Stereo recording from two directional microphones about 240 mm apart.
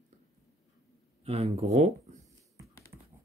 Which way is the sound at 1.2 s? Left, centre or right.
Right.